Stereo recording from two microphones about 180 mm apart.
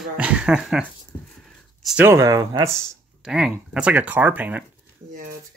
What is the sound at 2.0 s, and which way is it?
Speech, 15° right (ahead or behind).